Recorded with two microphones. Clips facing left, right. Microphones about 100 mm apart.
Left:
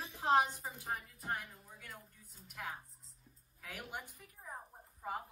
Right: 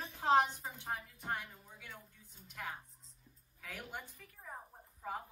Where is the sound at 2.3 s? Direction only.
5° left (ahead or behind).